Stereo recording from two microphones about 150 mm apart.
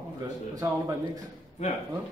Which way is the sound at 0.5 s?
25° right (ahead or behind).